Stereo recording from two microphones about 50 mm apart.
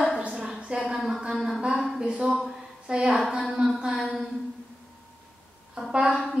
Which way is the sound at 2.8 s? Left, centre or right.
Centre.